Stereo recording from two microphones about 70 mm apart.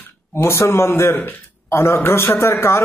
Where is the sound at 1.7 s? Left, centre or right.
Left.